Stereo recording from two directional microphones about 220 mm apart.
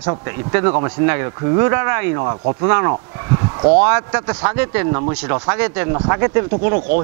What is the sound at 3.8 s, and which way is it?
Speech, 10° right (ahead or behind).